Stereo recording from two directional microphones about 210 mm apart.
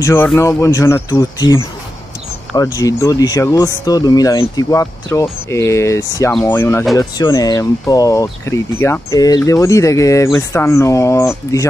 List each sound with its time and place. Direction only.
0.0 s speech: 10° left (ahead or behind)